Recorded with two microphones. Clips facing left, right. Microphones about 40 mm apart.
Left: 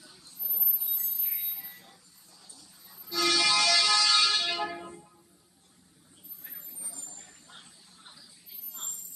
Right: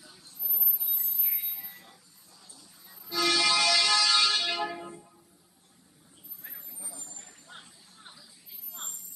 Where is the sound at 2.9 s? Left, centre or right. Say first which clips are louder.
Even; centre.